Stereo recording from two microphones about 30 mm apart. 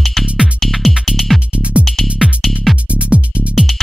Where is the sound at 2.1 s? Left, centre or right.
Centre.